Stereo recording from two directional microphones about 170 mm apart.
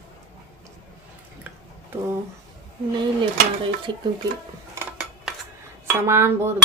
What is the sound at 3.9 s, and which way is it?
Speech, 25° right (ahead or behind).